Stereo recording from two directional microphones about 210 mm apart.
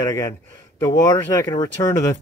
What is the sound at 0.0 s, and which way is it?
Speech, 15° left (ahead or behind).